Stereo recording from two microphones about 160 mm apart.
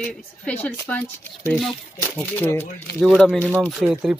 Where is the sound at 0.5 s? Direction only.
10° left (ahead or behind).